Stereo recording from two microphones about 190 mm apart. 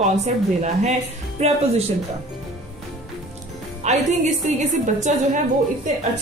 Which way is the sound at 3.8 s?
40° right (ahead or behind).